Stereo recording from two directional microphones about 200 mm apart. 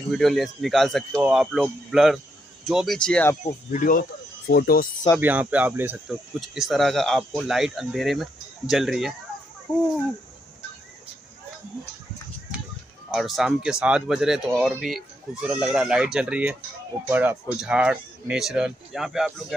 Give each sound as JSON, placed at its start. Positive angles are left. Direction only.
{"t": 0.1, "sound": "speech", "side_deg": 0}
{"t": 3.7, "sound": "speech", "side_deg": 40}
{"t": 5.2, "sound": "speech", "side_deg": -10}
{"t": 13.1, "sound": "speech", "side_deg": 0}